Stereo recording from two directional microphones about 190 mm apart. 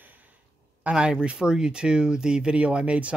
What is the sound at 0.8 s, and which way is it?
Speech, 5° right (ahead or behind).